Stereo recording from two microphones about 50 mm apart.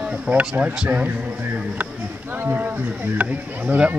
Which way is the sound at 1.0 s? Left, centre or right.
Right.